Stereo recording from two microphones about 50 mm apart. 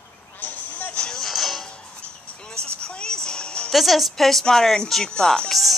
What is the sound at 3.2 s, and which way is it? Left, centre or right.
Music, centre.